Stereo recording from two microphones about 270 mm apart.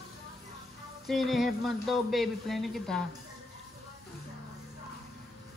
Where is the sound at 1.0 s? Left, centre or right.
Centre.